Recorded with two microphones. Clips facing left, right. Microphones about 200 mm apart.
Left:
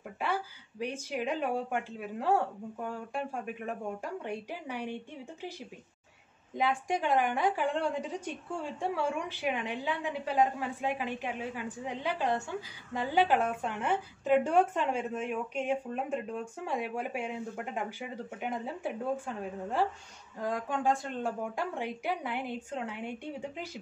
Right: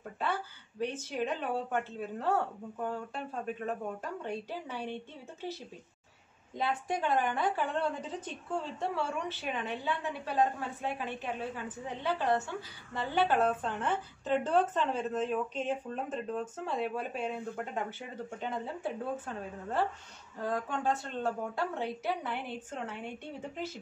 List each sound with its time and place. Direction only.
0.2 s a woman's voice: 10° left (ahead or behind)
18.4 s a woman's voice: 10° left (ahead or behind)